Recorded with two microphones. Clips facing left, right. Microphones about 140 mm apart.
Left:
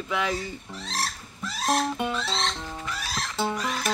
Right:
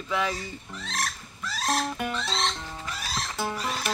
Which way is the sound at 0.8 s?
35° left (ahead or behind).